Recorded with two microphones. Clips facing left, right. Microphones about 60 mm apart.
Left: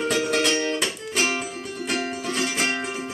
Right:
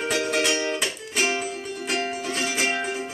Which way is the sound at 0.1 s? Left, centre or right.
Centre.